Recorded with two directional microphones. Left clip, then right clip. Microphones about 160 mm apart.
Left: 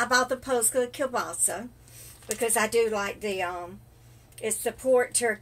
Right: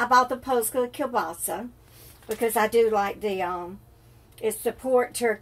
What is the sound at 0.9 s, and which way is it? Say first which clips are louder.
A woman's voice: right 2 dB; 10° right (ahead or behind).